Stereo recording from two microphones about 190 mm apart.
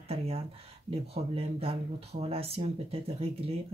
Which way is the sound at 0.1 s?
30° right (ahead or behind).